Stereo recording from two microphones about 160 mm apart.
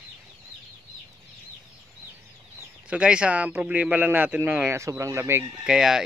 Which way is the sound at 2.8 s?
5° right (ahead or behind).